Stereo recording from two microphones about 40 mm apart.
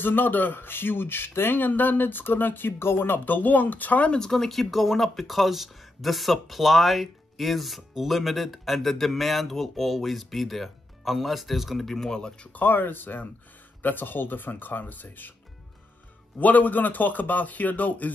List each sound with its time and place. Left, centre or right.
0.0 s speech: left
4.2 s speech: centre
11.8 s speech: centre
12.5 s speech: left
16.3 s speech: left